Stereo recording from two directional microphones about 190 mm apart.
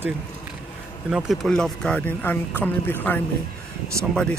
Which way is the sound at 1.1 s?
Centre (ahead or behind).